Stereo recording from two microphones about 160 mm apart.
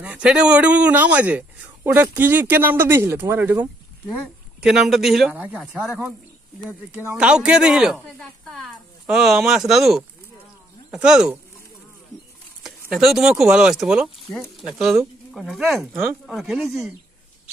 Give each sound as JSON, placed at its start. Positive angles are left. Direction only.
{"t": 0.0, "sound": "speech", "side_deg": -5}
{"t": 12.6, "sound": "speech", "side_deg": 0}